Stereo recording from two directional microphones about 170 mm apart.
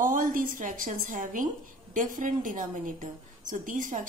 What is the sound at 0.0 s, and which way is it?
A woman's voice, 50° right (ahead or behind).